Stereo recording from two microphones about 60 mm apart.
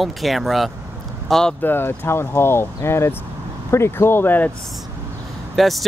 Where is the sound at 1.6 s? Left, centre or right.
Left.